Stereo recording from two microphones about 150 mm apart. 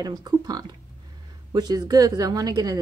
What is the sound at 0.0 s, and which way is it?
A woman's voice, 25° right (ahead or behind).